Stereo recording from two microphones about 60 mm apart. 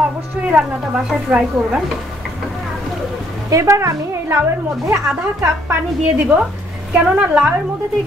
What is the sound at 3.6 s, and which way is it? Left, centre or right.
A woman's voice, right.